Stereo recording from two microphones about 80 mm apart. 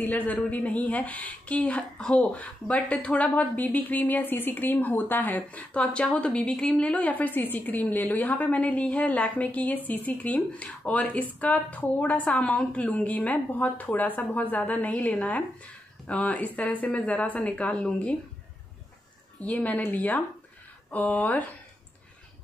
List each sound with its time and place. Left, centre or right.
0.0 s a woman's voice: left
19.4 s a woman's voice: centre